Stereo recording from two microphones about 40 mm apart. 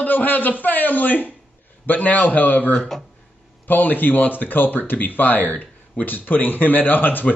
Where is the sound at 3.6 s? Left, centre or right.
Left.